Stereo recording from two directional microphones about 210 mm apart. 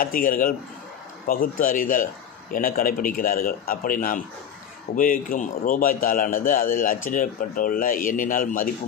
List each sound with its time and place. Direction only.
0.0 s a man's voice: 40° left (ahead or behind)